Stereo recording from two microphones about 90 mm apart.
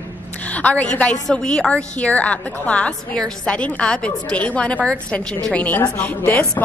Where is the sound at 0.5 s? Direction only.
15° left (ahead or behind).